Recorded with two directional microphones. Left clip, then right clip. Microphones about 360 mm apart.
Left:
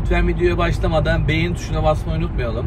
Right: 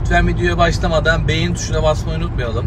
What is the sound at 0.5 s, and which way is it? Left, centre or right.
Speech, centre.